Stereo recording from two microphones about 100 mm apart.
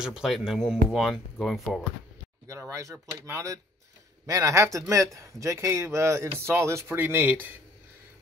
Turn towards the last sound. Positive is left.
turn(degrees=-20)  # may be behind; listen again after turning